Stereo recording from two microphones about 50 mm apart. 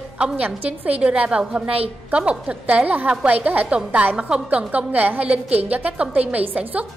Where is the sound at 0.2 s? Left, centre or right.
Right.